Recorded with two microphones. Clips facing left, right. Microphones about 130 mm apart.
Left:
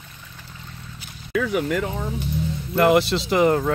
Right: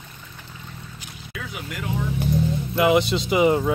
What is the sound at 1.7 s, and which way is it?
Speech, 40° left (ahead or behind).